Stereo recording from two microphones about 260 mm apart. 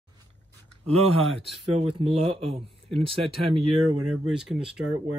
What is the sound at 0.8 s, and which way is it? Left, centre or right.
Speech, right.